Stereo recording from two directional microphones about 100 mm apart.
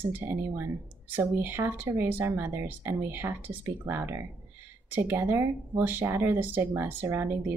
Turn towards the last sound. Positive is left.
turn(degrees=-25)  # may be behind; listen again after turning